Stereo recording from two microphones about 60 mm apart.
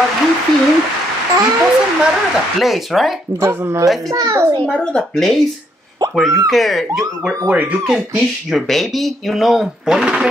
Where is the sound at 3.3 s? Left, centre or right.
Right.